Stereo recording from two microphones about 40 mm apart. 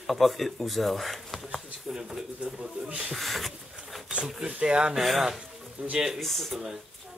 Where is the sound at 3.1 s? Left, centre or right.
Centre.